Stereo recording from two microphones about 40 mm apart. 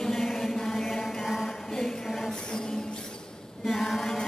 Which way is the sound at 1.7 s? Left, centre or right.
Centre.